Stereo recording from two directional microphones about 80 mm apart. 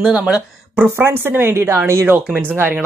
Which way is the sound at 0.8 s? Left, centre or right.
Right.